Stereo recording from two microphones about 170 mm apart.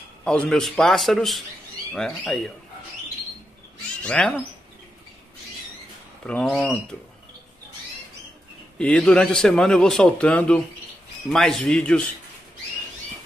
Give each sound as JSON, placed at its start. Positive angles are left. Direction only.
{"t": 0.2, "sound": "a man's voice", "side_deg": 5}
{"t": 4.0, "sound": "speech", "side_deg": 5}
{"t": 6.2, "sound": "a man's voice", "side_deg": 5}
{"t": 8.7, "sound": "a man's voice", "side_deg": 5}